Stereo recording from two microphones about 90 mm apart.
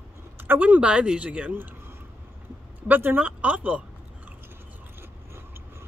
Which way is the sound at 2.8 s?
20° right (ahead or behind).